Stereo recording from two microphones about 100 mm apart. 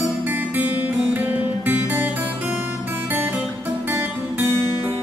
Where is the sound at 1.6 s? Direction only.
20° right (ahead or behind).